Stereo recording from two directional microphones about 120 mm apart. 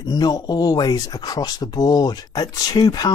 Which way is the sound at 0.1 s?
35° left (ahead or behind).